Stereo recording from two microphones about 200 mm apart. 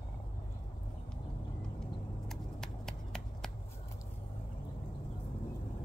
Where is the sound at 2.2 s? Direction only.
Centre (ahead or behind).